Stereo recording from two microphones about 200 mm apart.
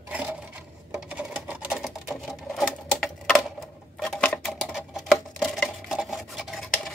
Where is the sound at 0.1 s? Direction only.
5° right (ahead or behind).